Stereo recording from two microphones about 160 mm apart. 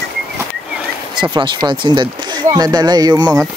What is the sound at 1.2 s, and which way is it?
Speech, 25° right (ahead or behind).